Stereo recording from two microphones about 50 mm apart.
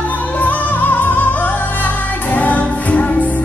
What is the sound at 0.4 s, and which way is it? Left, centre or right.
Music, left.